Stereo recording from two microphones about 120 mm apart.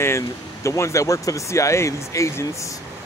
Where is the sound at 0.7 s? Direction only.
25° left (ahead or behind).